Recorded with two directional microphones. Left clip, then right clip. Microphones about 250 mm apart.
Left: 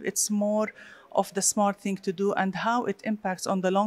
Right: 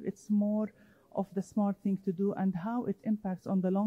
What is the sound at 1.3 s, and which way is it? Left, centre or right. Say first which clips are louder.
Speech: left 10 dB; centre.